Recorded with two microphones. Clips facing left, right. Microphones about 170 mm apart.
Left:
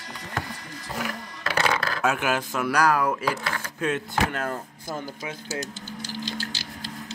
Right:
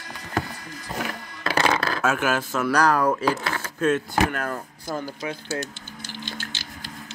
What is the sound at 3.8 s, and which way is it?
Speech, 20° left (ahead or behind).